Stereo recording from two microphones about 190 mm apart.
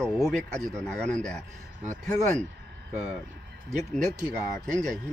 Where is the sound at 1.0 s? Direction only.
5° left (ahead or behind).